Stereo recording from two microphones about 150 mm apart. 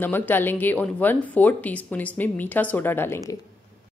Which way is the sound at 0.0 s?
15° left (ahead or behind).